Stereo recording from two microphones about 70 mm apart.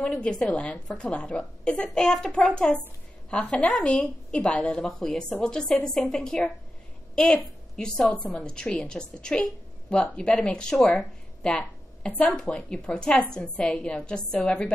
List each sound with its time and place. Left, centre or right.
0.0 s a woman's voice: centre
12.1 s a woman's voice: centre